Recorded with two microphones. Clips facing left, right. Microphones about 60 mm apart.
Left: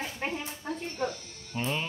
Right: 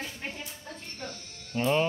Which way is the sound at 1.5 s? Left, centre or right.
Centre.